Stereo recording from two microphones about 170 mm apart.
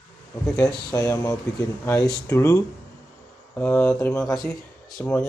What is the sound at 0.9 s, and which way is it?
Speech, 20° left (ahead or behind).